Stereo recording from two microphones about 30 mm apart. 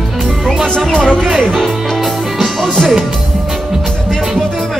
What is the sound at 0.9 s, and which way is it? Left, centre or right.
Speech, left.